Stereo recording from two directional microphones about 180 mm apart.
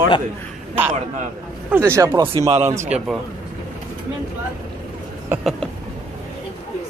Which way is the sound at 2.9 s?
5° right (ahead or behind).